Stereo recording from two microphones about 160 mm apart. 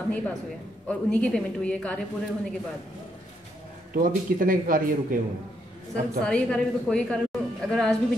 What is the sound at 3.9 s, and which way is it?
A man's voice, 60° right (ahead or behind).